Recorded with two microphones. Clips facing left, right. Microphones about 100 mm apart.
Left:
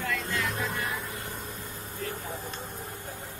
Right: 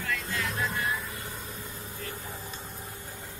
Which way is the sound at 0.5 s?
60° left (ahead or behind).